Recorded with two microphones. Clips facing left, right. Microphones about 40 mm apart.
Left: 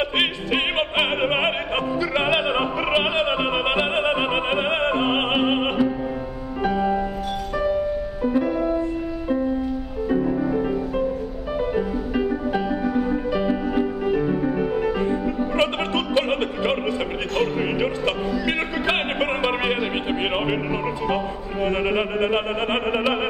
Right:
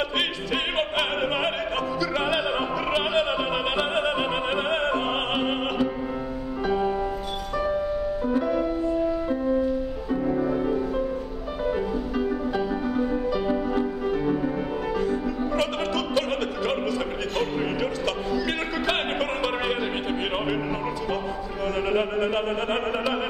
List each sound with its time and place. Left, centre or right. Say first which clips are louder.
0.2 s opera: left 4 dB; left
2.0 s music: left 4 dB; left
8.2 s music: left 6 dB; left
10.2 s music: left 2 dB; centre
12.1 s music: left 3 dB; left
15.0 s music: left 3 dB; left
21.6 s a sound: left 2 dB; left